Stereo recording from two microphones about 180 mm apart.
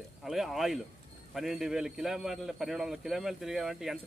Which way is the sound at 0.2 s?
Centre (ahead or behind).